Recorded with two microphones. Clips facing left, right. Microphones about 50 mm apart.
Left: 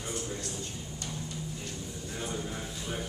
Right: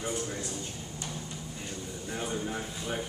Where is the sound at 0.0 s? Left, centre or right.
Centre.